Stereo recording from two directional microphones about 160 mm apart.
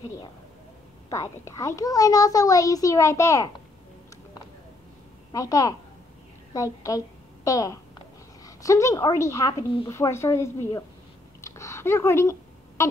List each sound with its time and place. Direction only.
1.1 s a child's voice: 20° left (ahead or behind)
5.3 s a child's voice: 20° left (ahead or behind)
11.4 s a sound: 15° left (ahead or behind)